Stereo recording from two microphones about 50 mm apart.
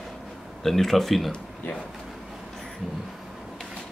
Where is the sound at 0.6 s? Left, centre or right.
Centre.